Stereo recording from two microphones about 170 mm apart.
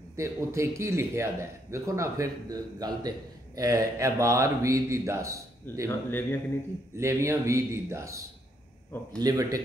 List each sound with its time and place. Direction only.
0.1 s a man's voice: 15° right (ahead or behind)
5.9 s speech: 15° left (ahead or behind)
7.0 s a man's voice: 15° right (ahead or behind)
9.2 s speech: 20° right (ahead or behind)